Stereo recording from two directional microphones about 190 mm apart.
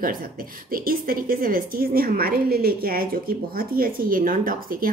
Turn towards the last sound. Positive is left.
turn(degrees=-45)  # may be behind; listen again after turning